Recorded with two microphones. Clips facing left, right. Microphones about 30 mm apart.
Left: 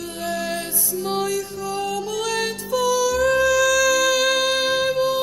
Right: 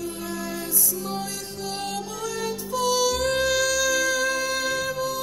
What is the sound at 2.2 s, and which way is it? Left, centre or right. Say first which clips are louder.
Music: left 4 dB; left.